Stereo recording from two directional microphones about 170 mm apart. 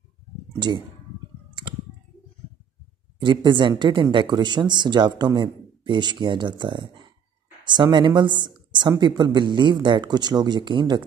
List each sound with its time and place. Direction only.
0.5 s speech: 25° right (ahead or behind)
1.5 s a sound: 30° right (ahead or behind)
3.2 s speech: 30° right (ahead or behind)